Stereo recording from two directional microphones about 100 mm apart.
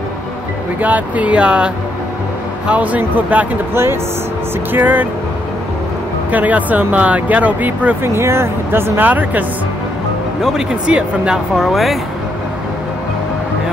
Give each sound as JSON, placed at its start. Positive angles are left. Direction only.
{"t": 0.7, "sound": "speech", "side_deg": -15}
{"t": 2.7, "sound": "speech", "side_deg": -15}
{"t": 6.3, "sound": "speech", "side_deg": -15}
{"t": 10.4, "sound": "speech", "side_deg": -5}